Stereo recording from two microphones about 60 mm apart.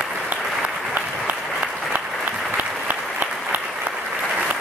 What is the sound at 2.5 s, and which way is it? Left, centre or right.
Applause, right.